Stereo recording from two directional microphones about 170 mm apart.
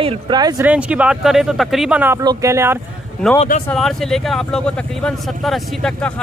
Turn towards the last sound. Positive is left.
turn(degrees=5)  # may be behind; listen again after turning